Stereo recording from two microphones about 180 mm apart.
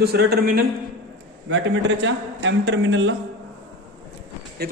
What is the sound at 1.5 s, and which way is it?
A man's voice, 90° right.